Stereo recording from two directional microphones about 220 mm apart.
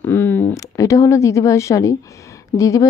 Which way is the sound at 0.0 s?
10° left (ahead or behind).